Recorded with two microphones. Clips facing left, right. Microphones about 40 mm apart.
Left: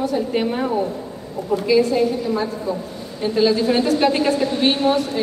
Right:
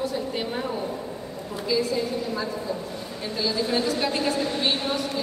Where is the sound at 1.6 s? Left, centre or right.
Left.